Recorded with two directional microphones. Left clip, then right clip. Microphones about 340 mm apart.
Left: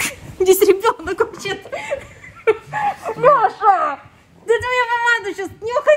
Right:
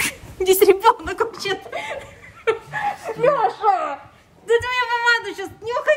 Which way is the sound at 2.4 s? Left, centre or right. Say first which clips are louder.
Left 4 dB; centre.